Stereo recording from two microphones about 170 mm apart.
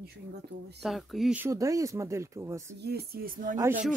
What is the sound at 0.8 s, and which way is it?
Speech, centre (ahead or behind).